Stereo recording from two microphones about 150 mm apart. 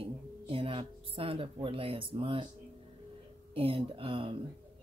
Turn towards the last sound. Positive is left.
turn(degrees=-35)  # may be behind; listen again after turning